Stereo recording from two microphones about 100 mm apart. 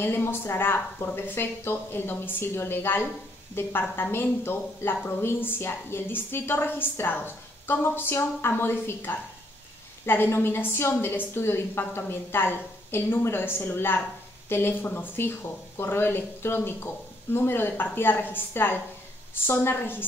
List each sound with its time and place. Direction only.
0.0 s a woman's voice: 25° left (ahead or behind)